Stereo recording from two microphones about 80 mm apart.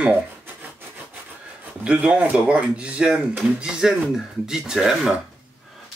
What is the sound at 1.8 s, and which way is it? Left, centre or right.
Speech, centre.